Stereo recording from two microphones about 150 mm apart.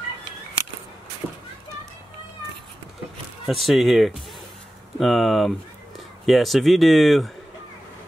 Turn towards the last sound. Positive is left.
turn(degrees=0)  # may be behind; listen again after turning